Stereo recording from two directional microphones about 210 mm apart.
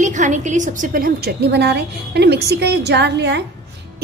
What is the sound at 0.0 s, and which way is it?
A woman's voice, 35° right (ahead or behind).